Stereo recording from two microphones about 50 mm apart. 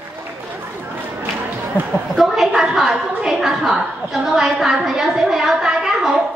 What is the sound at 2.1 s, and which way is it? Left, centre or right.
Chuckle, centre.